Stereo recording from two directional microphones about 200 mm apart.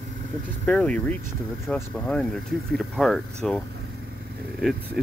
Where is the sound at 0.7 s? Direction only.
5° left (ahead or behind).